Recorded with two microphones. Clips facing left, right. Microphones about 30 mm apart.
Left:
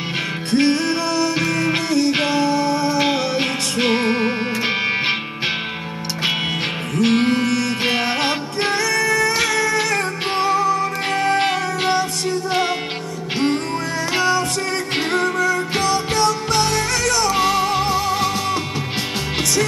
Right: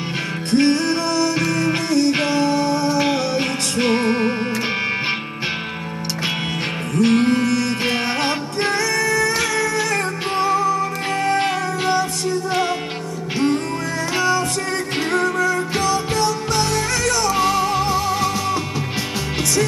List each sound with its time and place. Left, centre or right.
0.5 s music: centre
3.0 s music: centre
7.0 s music: centre
14.1 s music: left